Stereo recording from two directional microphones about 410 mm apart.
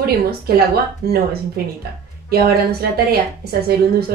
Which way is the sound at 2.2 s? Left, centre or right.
Right.